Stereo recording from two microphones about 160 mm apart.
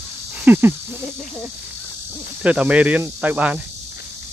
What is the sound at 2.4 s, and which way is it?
Speech, 10° right (ahead or behind).